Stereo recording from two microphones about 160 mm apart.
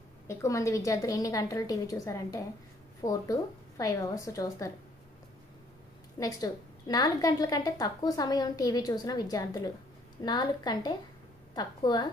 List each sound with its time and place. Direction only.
0.3 s a woman's voice: 20° left (ahead or behind)
6.1 s a woman's voice: 25° left (ahead or behind)